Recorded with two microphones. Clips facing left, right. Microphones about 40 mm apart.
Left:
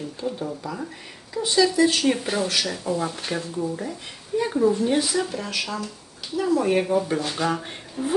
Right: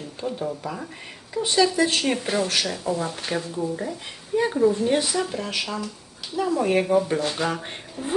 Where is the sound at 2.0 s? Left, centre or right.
Centre.